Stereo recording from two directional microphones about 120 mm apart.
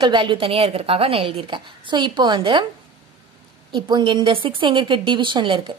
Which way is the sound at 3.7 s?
40° right (ahead or behind).